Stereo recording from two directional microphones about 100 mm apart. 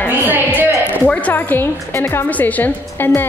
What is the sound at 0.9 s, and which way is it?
A woman's voice, 15° left (ahead or behind).